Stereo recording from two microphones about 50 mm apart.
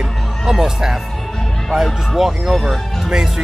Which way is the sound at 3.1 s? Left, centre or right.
Centre.